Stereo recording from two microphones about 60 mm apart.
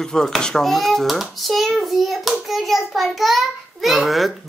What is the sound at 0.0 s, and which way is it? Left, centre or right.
A child's voice, centre.